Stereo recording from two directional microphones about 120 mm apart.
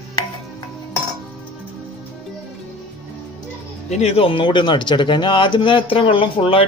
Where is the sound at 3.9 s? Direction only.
60° left (ahead or behind).